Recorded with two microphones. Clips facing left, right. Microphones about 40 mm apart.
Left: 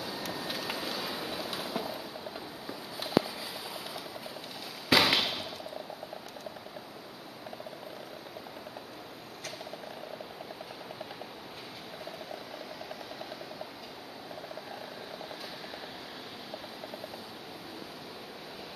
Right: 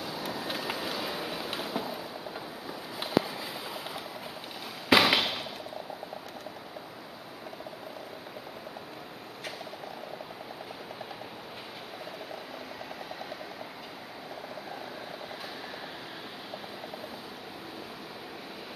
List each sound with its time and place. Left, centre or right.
0.0 s vehicle: centre
1.6 s a sound: centre
4.8 s fireworks: centre